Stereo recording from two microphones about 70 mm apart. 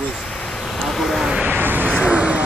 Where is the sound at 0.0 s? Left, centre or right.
Centre.